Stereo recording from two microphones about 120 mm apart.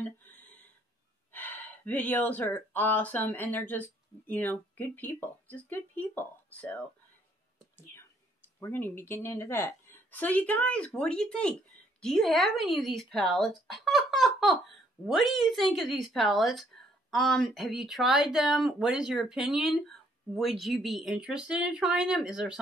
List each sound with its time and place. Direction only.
0.0 s a sound: 15° left (ahead or behind)
1.3 s speech: 15° left (ahead or behind)
8.5 s a woman's voice: 20° left (ahead or behind); by 22.6 s 5° right (ahead or behind)